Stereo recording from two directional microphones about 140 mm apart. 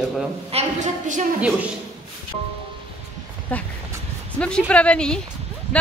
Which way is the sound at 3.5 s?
10° left (ahead or behind).